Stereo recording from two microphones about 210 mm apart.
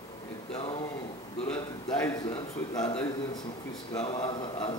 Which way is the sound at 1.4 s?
10° left (ahead or behind).